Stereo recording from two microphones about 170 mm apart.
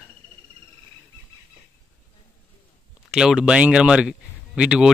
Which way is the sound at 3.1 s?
5° right (ahead or behind).